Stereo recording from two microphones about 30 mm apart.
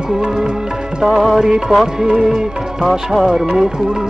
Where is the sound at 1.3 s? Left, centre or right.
Right.